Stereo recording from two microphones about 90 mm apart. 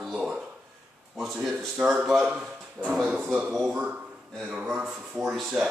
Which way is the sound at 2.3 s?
20° right (ahead or behind).